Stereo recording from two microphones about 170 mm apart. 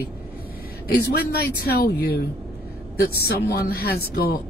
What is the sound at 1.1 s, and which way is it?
Speech, 65° left (ahead or behind).